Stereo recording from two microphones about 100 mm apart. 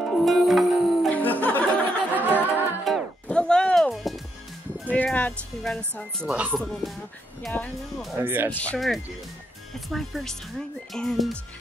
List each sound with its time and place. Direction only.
0.0 s music: centre (ahead or behind)
1.1 s music: 15° left (ahead or behind)
2.1 s music: 20° right (ahead or behind)
2.9 s music: 5° right (ahead or behind)
3.3 s music: 10° left (ahead or behind)
4.8 s speech: 15° left (ahead or behind)
6.2 s speech: 15° right (ahead or behind)
6.5 s speech: centre (ahead or behind)
8.2 s speech: 20° right (ahead or behind)
8.5 s speech: 15° left (ahead or behind)
8.7 s speech: centre (ahead or behind)